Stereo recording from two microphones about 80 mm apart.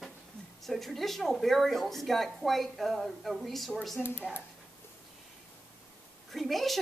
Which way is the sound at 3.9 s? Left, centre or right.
Left.